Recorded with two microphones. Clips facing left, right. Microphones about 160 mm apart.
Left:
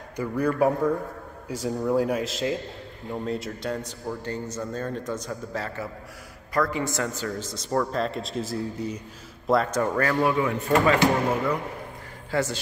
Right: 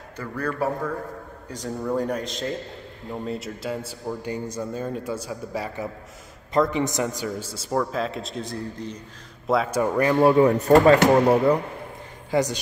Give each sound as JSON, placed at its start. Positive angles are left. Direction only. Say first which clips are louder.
{"t": 0.2, "sound": "a man's voice", "louder": "left 4 dB", "side_deg": 15}
{"t": 9.5, "sound": "a man's voice", "louder": "even", "side_deg": 0}
{"t": 9.8, "sound": "a man's voice", "louder": "right 3 dB", "side_deg": -15}
{"t": 10.2, "sound": "speech", "louder": "right 7 dB", "side_deg": -40}
{"t": 12.3, "sound": "speech", "louder": "right 4 dB", "side_deg": -15}